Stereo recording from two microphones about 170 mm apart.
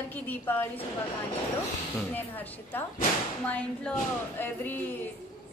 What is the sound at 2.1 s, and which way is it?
A woman's voice, 10° left (ahead or behind).